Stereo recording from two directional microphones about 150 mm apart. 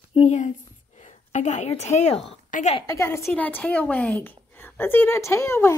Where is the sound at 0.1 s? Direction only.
50° left (ahead or behind).